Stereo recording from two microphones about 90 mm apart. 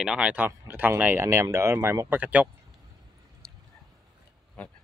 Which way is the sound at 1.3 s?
35° right (ahead or behind).